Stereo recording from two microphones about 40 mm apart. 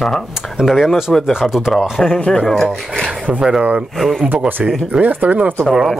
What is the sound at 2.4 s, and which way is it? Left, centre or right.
Speech, centre.